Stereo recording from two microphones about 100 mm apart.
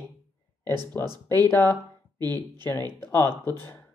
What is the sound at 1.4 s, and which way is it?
Speech, 25° left (ahead or behind).